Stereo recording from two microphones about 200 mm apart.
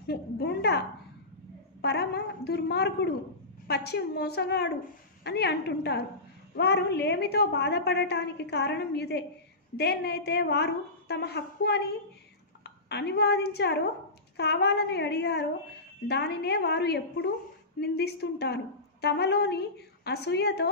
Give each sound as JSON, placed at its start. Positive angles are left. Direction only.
{"t": 0.0, "sound": "a woman's voice", "side_deg": 55}
{"t": 12.8, "sound": "a woman's voice", "side_deg": 55}